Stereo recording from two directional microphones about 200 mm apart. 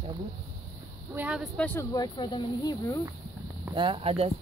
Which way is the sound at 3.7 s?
25° right (ahead or behind).